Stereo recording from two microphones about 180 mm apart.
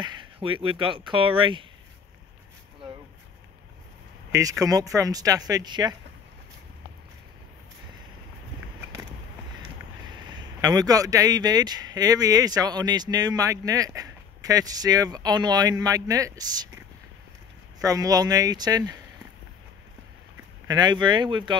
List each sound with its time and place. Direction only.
0.0 s speech: 25° right (ahead or behind)
4.3 s a man's voice: 20° right (ahead or behind)
10.1 s a man's voice: 25° right (ahead or behind)
20.6 s a man's voice: 25° right (ahead or behind)